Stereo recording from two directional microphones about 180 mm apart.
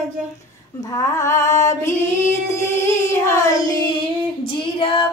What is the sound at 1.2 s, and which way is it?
Music, 15° left (ahead or behind).